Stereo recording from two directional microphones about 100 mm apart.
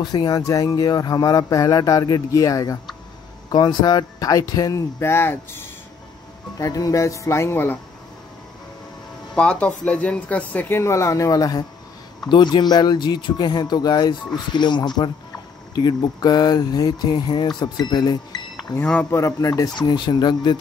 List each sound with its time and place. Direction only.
0.0 s speech: 45° left (ahead or behind); by 5.7 s 25° left (ahead or behind)
6.6 s speech: 35° left (ahead or behind)
9.3 s speech: 10° left (ahead or behind)
10.8 s speech: 30° left (ahead or behind)
19.0 s speech: 30° left (ahead or behind); by 20.5 s 45° left (ahead or behind)